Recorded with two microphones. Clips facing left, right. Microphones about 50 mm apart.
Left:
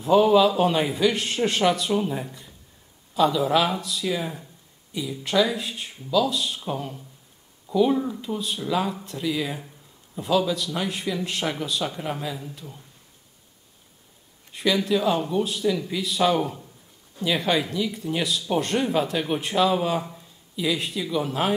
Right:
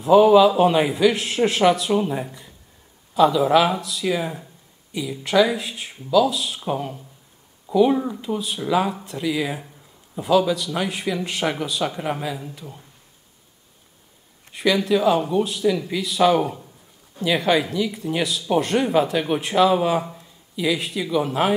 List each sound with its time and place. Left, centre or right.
0.0 s speech: centre
6.6 s speech: centre
8.1 s speech: centre
11.4 s speech: right
11.9 s speech: centre
14.5 s speech: centre